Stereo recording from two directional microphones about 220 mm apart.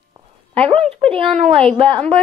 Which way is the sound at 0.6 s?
25° right (ahead or behind).